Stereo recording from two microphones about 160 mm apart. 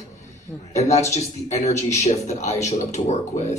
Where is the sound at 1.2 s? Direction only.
45° left (ahead or behind).